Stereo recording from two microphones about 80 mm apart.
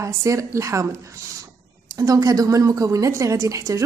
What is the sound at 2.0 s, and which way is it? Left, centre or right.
A woman's voice, right.